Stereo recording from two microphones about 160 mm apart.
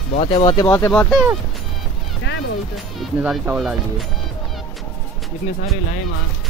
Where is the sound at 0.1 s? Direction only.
40° left (ahead or behind).